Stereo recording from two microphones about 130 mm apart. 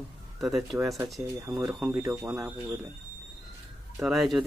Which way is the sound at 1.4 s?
20° right (ahead or behind).